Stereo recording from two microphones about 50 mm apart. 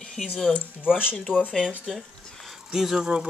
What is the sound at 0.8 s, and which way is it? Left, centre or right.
Speech, centre.